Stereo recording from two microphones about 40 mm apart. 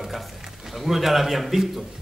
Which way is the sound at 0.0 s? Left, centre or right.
Centre.